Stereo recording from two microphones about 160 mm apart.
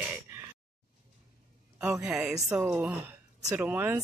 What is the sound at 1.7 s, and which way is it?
A man's voice, 10° right (ahead or behind).